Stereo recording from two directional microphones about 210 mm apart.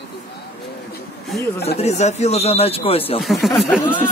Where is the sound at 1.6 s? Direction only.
30° left (ahead or behind).